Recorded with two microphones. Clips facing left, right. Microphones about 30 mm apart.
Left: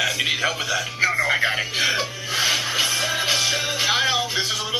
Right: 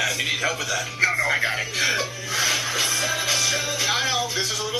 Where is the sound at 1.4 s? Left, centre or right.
Centre.